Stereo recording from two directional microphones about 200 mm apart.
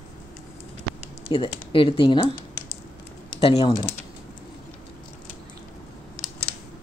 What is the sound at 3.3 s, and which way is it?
Speech, 30° left (ahead or behind).